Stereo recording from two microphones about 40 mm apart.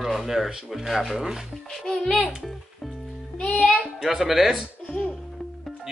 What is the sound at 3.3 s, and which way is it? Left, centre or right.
Music, left.